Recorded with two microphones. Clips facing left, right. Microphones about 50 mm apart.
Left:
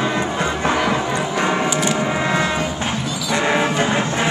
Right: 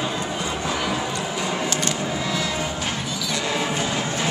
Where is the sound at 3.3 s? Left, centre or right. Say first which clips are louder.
Left 8 dB; left.